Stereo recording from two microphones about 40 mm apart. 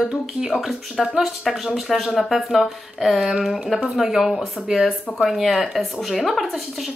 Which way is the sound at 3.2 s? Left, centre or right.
Centre.